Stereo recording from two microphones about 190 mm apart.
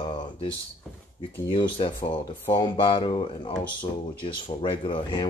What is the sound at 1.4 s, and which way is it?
Speech, 25° left (ahead or behind).